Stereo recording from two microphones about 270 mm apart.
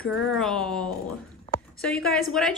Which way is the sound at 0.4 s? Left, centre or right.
Centre.